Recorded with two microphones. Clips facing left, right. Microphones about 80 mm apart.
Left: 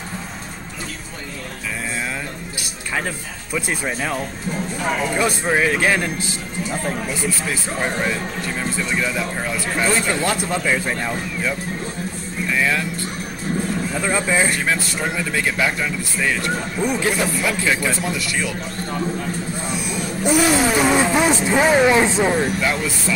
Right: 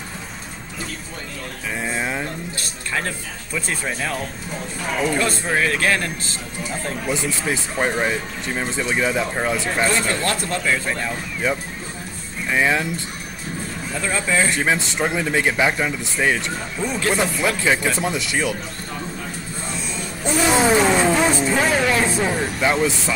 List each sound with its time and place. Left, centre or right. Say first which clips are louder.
3.5 s a man's voice: left 2 dB; centre
7.1 s speech: right 1 dB; right
10.0 s a man's voice: left 2 dB; centre
12.4 s speech: right 2 dB; right
13.9 s a man's voice: even; centre
14.6 s speech: right 2 dB; right
16.8 s a man's voice: left 2 dB; centre
17.4 s speech: right 1 dB; right
19.7 s a sound: left 3 dB; centre
20.4 s vehicle: right 1 dB; right
20.8 s speech: even; centre
22.6 s speech: right 3 dB; right